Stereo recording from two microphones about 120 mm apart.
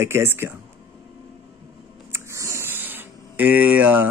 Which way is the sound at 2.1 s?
25° right (ahead or behind).